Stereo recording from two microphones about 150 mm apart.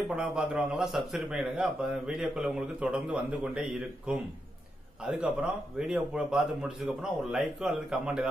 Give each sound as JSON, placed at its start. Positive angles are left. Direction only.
{"t": 0.1, "sound": "a man's voice", "side_deg": -5}